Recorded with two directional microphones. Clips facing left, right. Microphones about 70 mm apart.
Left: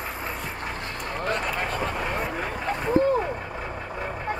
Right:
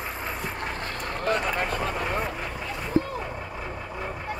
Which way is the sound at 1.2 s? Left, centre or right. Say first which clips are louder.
Right 2 dB; centre.